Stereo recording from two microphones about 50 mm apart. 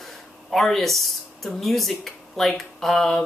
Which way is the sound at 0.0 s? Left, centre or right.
Centre.